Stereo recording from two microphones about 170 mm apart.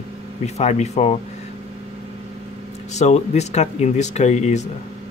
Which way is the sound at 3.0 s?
40° left (ahead or behind).